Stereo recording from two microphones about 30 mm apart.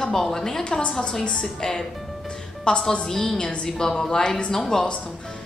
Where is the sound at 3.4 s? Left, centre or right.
Left.